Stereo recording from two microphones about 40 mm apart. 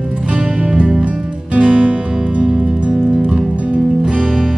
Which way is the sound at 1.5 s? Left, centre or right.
Centre.